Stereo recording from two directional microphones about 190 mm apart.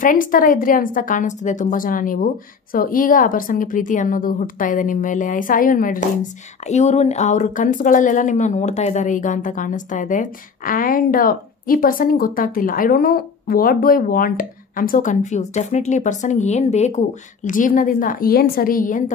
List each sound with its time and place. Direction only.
0.0 s speech: 45° left (ahead or behind)